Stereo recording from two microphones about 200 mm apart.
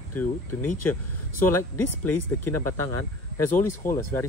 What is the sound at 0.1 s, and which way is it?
Speech, 10° left (ahead or behind).